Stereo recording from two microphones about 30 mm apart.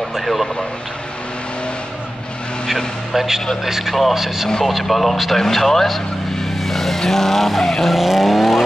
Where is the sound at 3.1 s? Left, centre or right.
Centre.